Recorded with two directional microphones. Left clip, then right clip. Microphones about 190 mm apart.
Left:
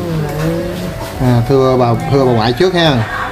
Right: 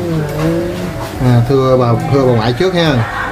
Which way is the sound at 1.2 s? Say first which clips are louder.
Left 1 dB; 40° left (ahead or behind).